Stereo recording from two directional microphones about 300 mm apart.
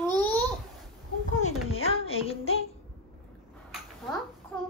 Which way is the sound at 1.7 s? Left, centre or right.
Centre.